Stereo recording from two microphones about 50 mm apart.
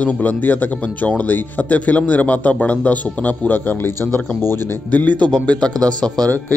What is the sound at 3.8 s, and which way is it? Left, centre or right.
Speech, left.